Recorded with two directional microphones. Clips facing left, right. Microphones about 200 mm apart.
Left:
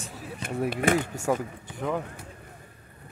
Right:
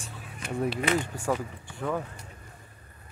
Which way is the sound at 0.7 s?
50° left (ahead or behind).